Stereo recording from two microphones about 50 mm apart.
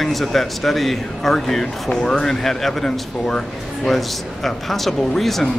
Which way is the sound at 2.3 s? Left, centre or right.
Centre.